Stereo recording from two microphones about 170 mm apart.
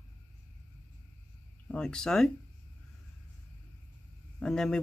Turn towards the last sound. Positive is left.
turn(degrees=5)  # may be behind; listen again after turning